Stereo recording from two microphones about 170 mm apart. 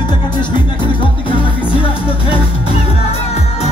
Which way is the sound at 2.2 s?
35° left (ahead or behind).